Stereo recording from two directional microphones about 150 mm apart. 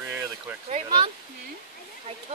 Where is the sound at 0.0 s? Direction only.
15° right (ahead or behind).